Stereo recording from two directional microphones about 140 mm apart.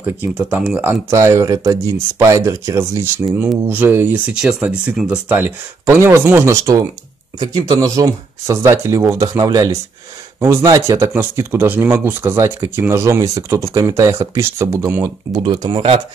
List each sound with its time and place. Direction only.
0.0 s speech: 15° right (ahead or behind)
15.4 s speech: 35° right (ahead or behind)